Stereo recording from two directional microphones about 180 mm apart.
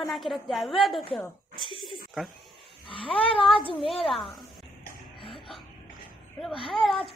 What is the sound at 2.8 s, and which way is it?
Speech, 30° left (ahead or behind).